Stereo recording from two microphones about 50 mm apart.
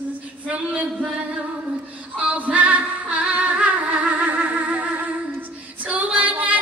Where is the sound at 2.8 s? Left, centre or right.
Right.